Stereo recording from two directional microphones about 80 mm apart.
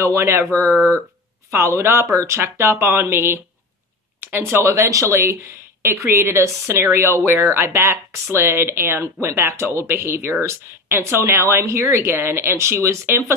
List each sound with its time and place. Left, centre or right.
0.0 s speech: right